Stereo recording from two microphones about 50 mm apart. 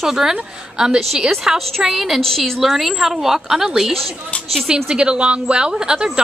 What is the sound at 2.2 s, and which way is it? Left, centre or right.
A woman's voice, centre.